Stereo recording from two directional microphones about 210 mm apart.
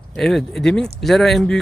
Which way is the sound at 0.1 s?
Centre (ahead or behind).